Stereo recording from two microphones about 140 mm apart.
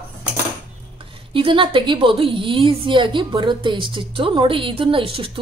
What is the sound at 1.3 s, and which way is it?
A woman's voice, 35° right (ahead or behind).